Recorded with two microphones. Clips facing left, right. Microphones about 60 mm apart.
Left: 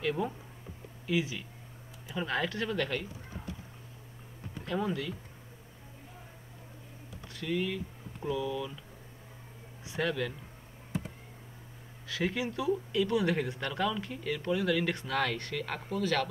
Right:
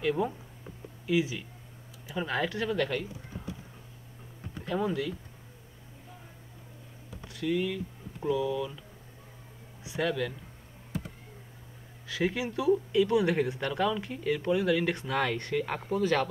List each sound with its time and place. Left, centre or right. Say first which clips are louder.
0.0 s speech: right 3 dB; centre
1.1 s speech: right 4 dB; centre
2.0 s speech: right 2 dB; centre
4.6 s speech: right 3 dB; centre
7.4 s speech: right 3 dB; centre
10.0 s speech: right 2 dB; centre
12.1 s speech: right 2 dB; centre